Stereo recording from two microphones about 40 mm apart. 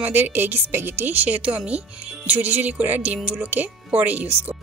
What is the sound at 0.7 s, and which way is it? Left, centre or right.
Speech, right.